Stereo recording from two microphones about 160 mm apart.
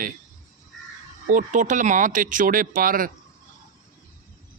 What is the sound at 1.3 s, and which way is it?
Speech, 55° right (ahead or behind).